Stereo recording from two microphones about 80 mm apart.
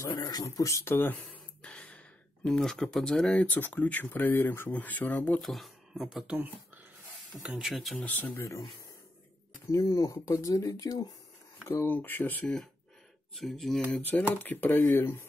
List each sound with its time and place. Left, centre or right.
0.0 s speech: left
0.8 s speech: left
1.6 s speech: centre
5.4 s speech: centre
6.3 s speech: right
7.4 s speech: centre
7.9 s speech: centre
8.4 s speech: left
9.7 s speech: left
11.6 s speech: left
13.4 s speech: centre
14.0 s speech: left